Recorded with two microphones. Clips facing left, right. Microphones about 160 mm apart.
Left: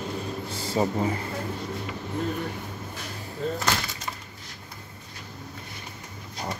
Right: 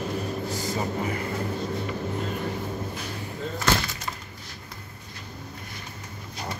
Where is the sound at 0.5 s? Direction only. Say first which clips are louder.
Left 6 dB; 30° left (ahead or behind).